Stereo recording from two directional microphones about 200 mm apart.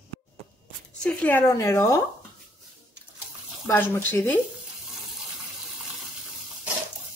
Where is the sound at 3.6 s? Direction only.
10° left (ahead or behind).